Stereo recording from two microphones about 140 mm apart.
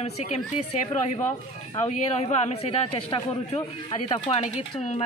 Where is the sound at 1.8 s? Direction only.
50° left (ahead or behind).